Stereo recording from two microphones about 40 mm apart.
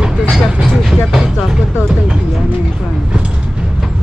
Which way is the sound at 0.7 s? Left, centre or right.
Centre.